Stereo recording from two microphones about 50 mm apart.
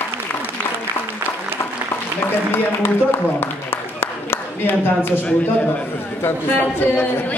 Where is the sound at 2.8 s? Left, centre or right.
Left.